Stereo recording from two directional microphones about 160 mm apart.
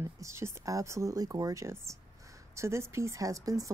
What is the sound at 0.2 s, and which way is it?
A woman's voice, 20° right (ahead or behind).